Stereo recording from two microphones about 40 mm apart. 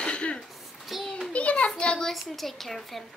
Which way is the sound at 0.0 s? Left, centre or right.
Left.